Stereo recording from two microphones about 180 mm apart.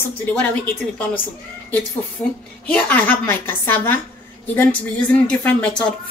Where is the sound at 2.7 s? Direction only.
10° left (ahead or behind).